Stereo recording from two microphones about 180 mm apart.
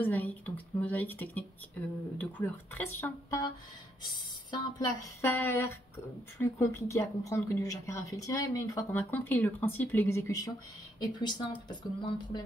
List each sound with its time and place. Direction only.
0.0 s a woman's voice: 10° left (ahead or behind)